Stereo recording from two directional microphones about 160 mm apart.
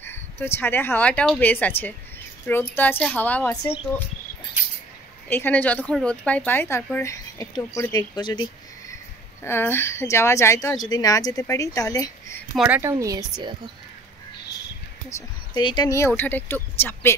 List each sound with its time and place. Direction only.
0.0 s speech: 15° left (ahead or behind)
5.3 s speech: 10° left (ahead or behind)
9.4 s a woman's voice: 15° left (ahead or behind)
12.5 s speech: 10° right (ahead or behind)
15.0 s a woman's voice: 20° left (ahead or behind)
16.1 s speech: 10° left (ahead or behind)